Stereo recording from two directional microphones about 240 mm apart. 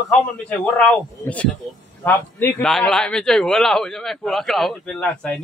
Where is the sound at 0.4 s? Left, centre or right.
Centre.